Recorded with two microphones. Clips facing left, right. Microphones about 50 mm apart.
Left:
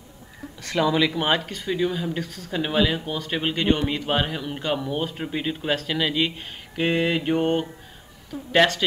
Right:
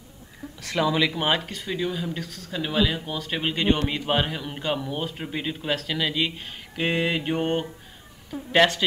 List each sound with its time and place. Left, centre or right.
0.6 s a man's voice: centre